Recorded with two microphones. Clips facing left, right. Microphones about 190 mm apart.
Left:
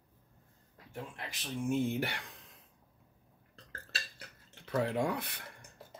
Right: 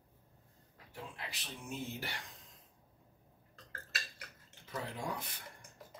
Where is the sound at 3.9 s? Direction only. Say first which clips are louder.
Left 1 dB; 30° left (ahead or behind).